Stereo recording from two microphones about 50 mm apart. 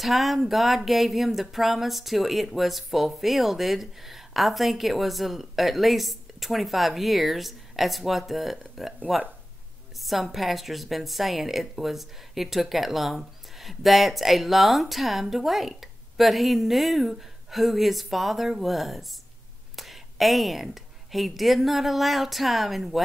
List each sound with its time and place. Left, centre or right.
0.0 s a woman's voice: centre
9.9 s a woman's voice: centre